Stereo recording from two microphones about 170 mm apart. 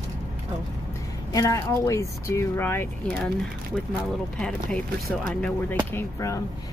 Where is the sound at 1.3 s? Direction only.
20° left (ahead or behind).